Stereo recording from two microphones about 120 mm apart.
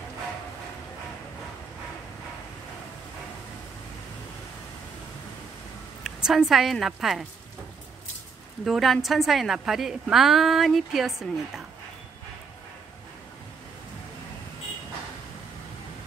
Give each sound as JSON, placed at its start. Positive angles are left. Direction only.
{"t": 6.0, "sound": "a woman's voice", "side_deg": -5}
{"t": 8.6, "sound": "a woman's voice", "side_deg": 0}